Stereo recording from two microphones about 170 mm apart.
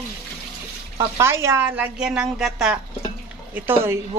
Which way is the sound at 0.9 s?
15° right (ahead or behind).